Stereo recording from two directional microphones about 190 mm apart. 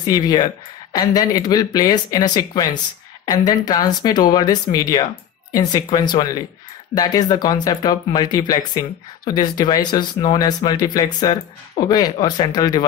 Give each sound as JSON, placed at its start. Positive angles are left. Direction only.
{"t": 0.0, "sound": "speech", "side_deg": 20}